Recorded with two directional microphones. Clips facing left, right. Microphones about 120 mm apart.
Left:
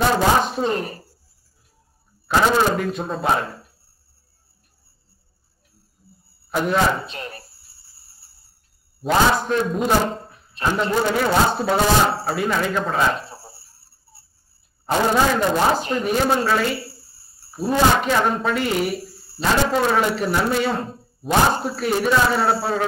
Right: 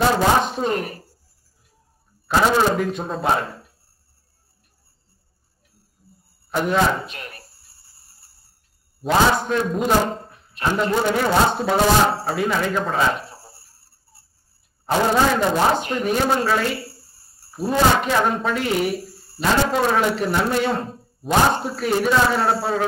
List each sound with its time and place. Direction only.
0.4 s speech: centre (ahead or behind)
0.7 s speech: 30° left (ahead or behind)
2.2 s speech: centre (ahead or behind)
6.5 s speech: centre (ahead or behind)
7.1 s speech: 30° left (ahead or behind)
7.4 s music: centre (ahead or behind)
9.0 s speech: centre (ahead or behind)
13.4 s a sound: centre (ahead or behind)
14.9 s speech: centre (ahead or behind)
15.8 s speech: 30° left (ahead or behind)
16.1 s speech: centre (ahead or behind)